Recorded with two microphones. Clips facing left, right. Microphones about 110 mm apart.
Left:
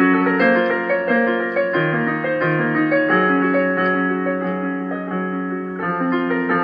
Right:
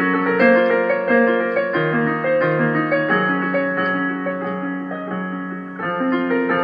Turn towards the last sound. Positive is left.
turn(degrees=0)  # may be behind; listen again after turning